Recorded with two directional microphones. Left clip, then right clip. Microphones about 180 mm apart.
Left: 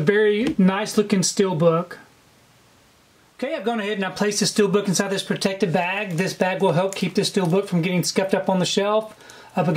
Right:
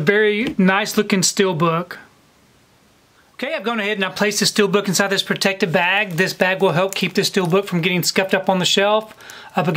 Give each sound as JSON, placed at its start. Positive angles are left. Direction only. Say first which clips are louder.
{"t": 0.0, "sound": "speech", "louder": "right 2 dB", "side_deg": -20}
{"t": 3.3, "sound": "speech", "louder": "right 3 dB", "side_deg": -20}